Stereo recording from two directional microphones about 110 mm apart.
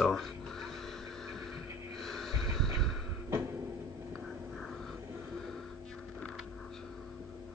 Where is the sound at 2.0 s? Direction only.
5° left (ahead or behind).